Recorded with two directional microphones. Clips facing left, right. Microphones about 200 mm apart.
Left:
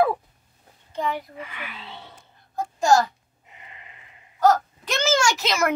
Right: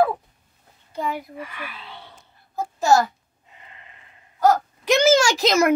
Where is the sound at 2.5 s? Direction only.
5° right (ahead or behind).